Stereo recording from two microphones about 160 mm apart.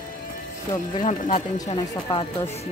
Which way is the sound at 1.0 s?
50° left (ahead or behind).